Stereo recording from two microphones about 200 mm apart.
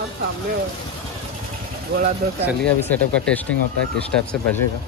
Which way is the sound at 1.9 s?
55° right (ahead or behind).